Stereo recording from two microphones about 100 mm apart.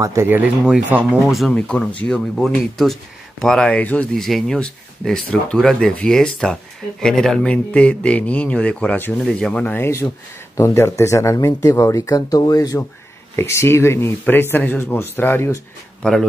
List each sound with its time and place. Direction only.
0.0 s speech: 30° right (ahead or behind)
0.4 s speech: 10° right (ahead or behind)
1.5 s speech: 15° left (ahead or behind)
4.1 s speech: centre (ahead or behind); by 12.7 s 40° left (ahead or behind)
13.4 s speech: 25° left (ahead or behind)
16.0 s speech: 5° left (ahead or behind)